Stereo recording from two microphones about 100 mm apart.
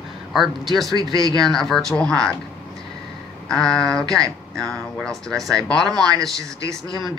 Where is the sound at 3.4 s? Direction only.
5° left (ahead or behind).